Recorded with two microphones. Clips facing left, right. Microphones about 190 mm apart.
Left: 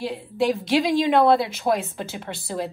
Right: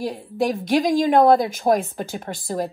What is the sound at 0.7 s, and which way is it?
A woman's voice, 50° right (ahead or behind).